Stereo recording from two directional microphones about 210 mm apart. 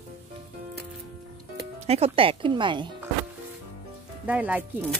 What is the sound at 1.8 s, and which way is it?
Speech, 30° right (ahead or behind).